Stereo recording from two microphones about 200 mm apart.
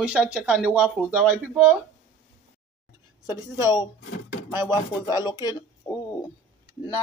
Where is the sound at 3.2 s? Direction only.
20° left (ahead or behind).